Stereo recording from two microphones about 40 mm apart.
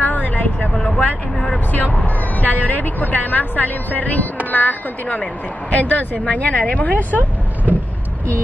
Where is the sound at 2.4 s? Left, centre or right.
Left.